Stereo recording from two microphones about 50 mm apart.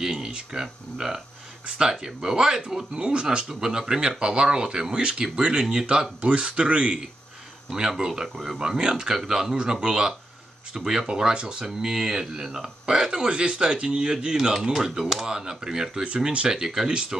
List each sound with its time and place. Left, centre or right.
0.0 s speech: centre
8.0 s speech: centre